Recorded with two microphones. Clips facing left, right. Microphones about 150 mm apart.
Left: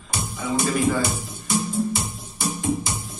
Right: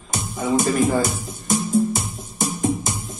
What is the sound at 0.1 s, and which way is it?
Music, 45° right (ahead or behind).